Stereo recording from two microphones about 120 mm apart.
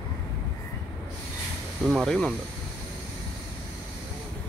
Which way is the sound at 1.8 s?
Centre (ahead or behind).